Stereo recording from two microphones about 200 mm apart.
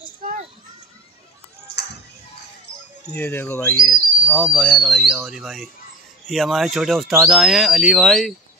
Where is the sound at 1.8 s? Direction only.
55° left (ahead or behind).